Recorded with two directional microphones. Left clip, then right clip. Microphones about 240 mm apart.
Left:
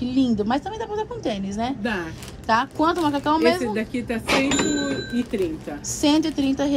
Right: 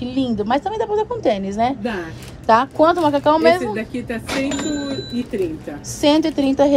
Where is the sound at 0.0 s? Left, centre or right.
Centre.